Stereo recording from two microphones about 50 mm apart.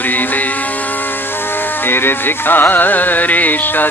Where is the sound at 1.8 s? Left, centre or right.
Left.